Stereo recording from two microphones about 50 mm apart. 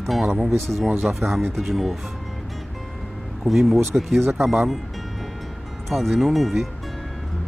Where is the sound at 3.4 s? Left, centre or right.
Centre.